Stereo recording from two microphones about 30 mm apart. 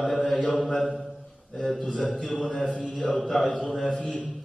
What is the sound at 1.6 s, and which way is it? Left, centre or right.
Mantra, centre.